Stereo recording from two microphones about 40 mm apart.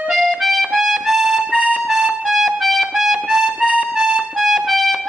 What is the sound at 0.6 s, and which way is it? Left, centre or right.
Music, centre.